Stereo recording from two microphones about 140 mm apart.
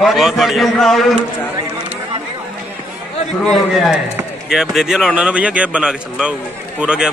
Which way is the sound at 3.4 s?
Centre (ahead or behind).